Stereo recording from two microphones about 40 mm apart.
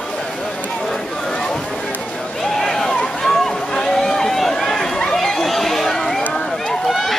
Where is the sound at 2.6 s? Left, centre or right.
Centre.